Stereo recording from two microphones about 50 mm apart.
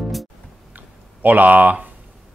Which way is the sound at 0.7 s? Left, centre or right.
Right.